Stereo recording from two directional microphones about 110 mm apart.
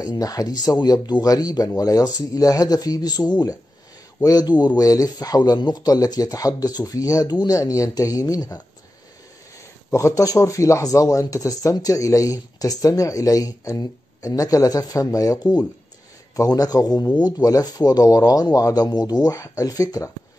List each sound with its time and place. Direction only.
0.0 s speech: 35° left (ahead or behind)
9.8 s speech: 25° left (ahead or behind)